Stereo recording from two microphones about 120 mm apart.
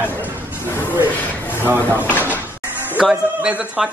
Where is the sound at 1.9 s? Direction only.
15° right (ahead or behind).